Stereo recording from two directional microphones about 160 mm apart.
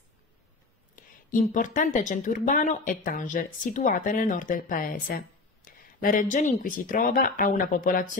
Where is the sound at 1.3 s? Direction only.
55° left (ahead or behind).